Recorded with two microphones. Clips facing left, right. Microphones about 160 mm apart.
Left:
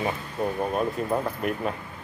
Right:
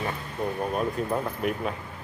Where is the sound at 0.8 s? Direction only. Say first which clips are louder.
Left 1 dB; centre (ahead or behind).